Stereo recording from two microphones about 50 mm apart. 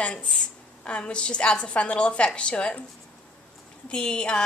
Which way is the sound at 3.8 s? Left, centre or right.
Centre.